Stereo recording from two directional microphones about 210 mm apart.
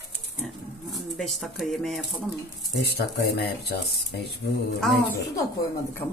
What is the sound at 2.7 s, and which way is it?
Speech, 50° left (ahead or behind).